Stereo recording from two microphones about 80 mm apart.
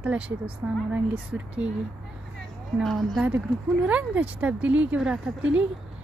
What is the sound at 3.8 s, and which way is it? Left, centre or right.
Speech, centre.